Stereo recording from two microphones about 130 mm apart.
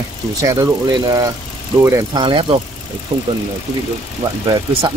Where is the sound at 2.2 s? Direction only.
40° right (ahead or behind).